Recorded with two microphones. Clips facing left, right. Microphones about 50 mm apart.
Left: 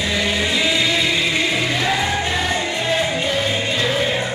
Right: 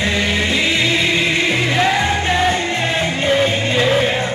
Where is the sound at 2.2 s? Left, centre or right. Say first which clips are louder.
Right 4 dB; right.